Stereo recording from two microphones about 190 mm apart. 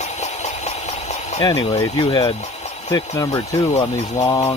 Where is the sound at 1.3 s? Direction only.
20° left (ahead or behind).